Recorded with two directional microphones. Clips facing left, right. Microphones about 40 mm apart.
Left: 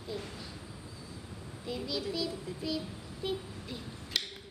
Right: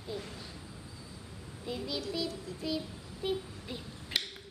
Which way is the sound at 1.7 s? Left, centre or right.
Centre.